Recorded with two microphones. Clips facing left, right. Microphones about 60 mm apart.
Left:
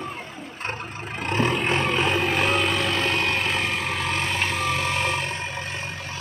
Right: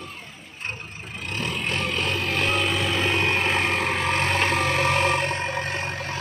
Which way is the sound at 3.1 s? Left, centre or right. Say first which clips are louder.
Right 1 dB; centre.